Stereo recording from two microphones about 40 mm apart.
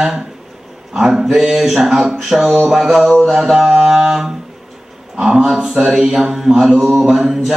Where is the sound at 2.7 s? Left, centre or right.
Centre.